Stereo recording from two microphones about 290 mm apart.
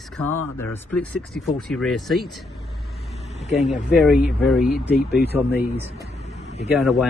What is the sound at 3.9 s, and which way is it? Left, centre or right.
Speech, centre.